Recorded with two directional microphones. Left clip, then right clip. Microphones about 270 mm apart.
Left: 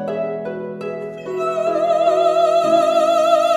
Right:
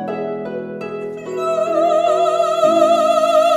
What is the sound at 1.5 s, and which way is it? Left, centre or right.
Music, centre.